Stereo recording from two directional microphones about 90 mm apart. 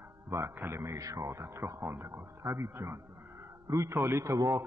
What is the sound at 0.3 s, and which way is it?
A man's voice, 30° right (ahead or behind).